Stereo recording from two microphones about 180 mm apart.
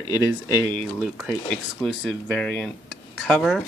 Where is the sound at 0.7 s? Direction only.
Centre (ahead or behind).